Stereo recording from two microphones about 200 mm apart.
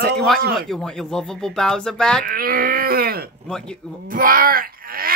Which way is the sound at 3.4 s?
5° left (ahead or behind).